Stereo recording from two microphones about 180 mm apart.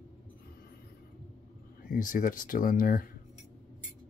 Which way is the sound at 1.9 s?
50° left (ahead or behind).